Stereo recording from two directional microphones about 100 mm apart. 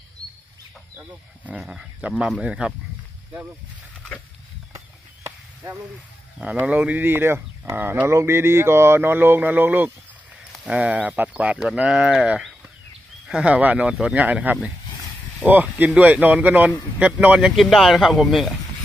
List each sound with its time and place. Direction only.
1.4 s speech: 10° right (ahead or behind)
4.7 s chop: 30° right (ahead or behind)
6.6 s a man's voice: 15° right (ahead or behind)